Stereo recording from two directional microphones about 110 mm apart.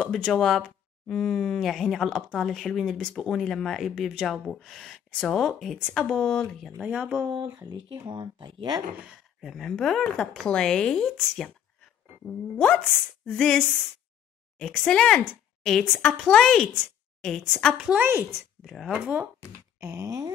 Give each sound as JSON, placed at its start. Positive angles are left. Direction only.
{"t": 0.2, "sound": "speech", "side_deg": 5}
{"t": 6.8, "sound": "speech", "side_deg": -10}
{"t": 7.4, "sound": "speech", "side_deg": -35}
{"t": 9.0, "sound": "a woman's voice", "side_deg": -5}
{"t": 17.7, "sound": "speech", "side_deg": -5}
{"t": 19.8, "sound": "a sound", "side_deg": -25}